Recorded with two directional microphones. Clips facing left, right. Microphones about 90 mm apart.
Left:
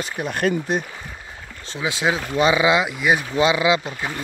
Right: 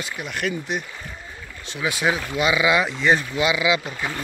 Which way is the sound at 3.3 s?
35° left (ahead or behind).